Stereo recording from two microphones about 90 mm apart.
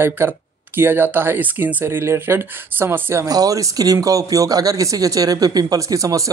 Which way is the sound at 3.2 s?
40° right (ahead or behind).